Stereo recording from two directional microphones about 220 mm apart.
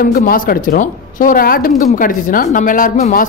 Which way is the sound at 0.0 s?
40° left (ahead or behind).